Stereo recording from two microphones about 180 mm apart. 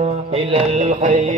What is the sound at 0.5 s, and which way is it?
Music, 45° right (ahead or behind).